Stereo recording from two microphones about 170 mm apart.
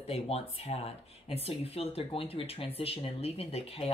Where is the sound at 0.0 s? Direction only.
40° left (ahead or behind).